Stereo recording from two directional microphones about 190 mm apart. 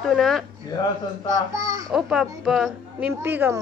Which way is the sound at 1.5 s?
20° right (ahead or behind).